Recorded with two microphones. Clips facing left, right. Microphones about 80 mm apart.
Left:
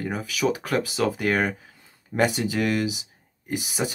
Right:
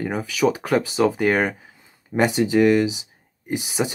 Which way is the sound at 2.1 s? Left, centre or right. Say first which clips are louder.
Right 5 dB; right.